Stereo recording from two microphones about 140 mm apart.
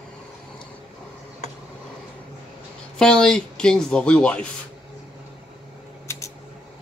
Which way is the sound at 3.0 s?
5° left (ahead or behind).